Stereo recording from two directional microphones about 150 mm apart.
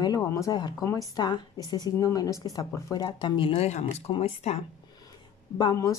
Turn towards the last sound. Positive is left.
turn(degrees=25)  # may be behind; listen again after turning